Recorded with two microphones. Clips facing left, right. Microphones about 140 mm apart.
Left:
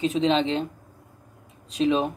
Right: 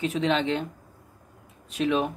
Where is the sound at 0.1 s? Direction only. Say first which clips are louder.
Left 3 dB; 30° left (ahead or behind).